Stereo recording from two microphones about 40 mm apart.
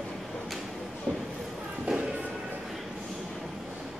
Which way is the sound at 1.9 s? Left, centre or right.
Right.